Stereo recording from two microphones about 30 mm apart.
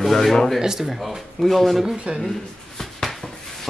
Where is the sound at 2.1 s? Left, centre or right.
Right.